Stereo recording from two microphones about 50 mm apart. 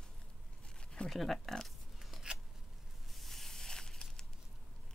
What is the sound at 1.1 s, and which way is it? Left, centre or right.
Speech, centre.